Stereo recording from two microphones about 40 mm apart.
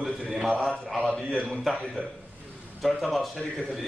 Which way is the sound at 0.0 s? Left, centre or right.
Centre.